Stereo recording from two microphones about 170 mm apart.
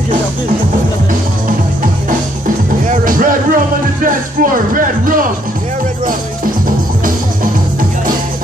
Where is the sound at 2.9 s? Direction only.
55° right (ahead or behind).